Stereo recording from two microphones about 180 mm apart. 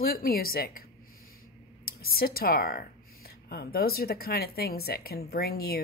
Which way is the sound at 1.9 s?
55° left (ahead or behind).